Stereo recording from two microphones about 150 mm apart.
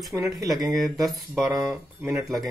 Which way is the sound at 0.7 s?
Centre (ahead or behind).